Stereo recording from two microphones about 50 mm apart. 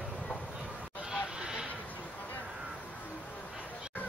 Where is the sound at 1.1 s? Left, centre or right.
Centre.